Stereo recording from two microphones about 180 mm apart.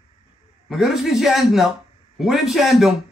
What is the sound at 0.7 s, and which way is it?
Speech, centre (ahead or behind).